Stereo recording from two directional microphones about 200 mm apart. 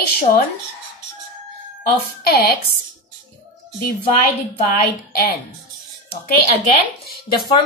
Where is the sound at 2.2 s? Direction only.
55° left (ahead or behind).